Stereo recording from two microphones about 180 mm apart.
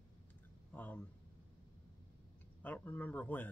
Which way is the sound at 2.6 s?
10° left (ahead or behind).